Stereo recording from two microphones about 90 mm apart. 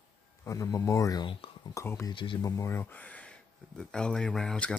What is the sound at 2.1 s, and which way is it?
Speech, 70° left (ahead or behind).